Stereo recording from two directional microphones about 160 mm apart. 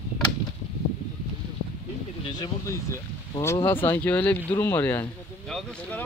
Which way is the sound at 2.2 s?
25° left (ahead or behind).